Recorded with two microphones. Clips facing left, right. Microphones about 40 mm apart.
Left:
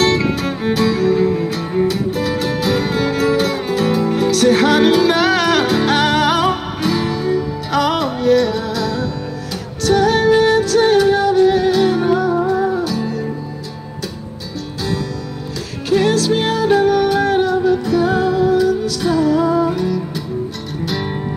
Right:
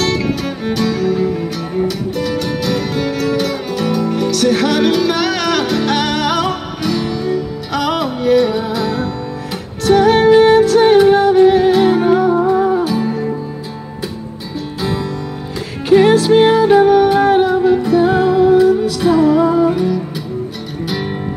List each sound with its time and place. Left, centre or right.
0.0 s music: centre
15.9 s music: right; by 21.1 s centre